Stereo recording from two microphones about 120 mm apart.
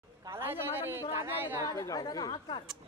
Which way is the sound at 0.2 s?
20° right (ahead or behind).